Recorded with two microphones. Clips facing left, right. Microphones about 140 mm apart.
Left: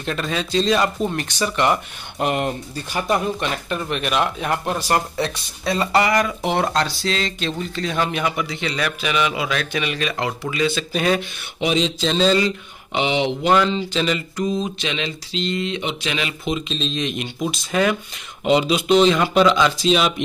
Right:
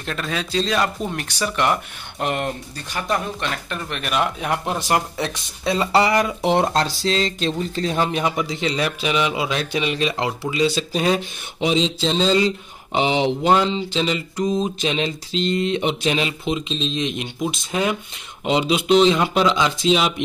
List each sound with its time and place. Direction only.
0.0 s a man's voice: centre (ahead or behind); by 5.9 s 20° right (ahead or behind)
5.9 s a man's voice: 30° right (ahead or behind)
7.0 s mantra: 35° right (ahead or behind)
7.7 s a man's voice: 30° right (ahead or behind)
12.9 s mantra: 35° right (ahead or behind)
13.5 s a man's voice: 20° right (ahead or behind)
14.4 s mantra: 40° right (ahead or behind)
16.3 s a man's voice: 20° right (ahead or behind)